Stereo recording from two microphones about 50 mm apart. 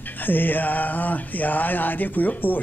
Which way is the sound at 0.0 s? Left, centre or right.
Left.